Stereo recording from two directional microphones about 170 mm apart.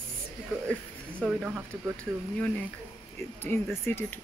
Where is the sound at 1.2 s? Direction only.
5° right (ahead or behind).